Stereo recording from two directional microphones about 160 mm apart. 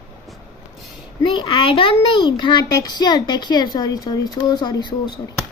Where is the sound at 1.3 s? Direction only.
35° left (ahead or behind).